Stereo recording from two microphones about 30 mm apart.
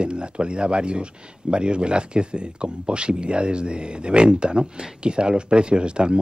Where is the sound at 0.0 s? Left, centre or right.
Right.